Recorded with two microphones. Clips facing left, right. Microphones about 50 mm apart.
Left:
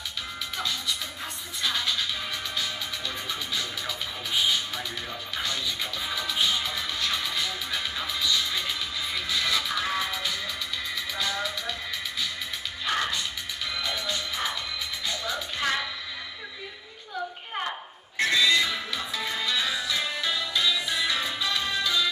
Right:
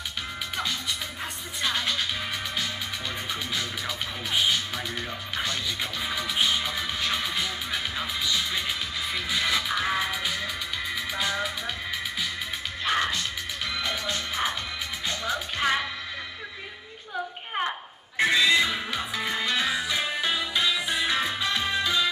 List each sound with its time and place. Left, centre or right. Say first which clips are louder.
1.7 s music: right 1 dB; centre
3.3 s music: right 1 dB; centre
12.8 s music: right 2 dB; centre
15.6 s music: right 2 dB; centre
17.6 s music: right 3 dB; centre